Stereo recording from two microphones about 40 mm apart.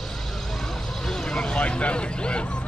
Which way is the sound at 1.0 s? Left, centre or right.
Centre.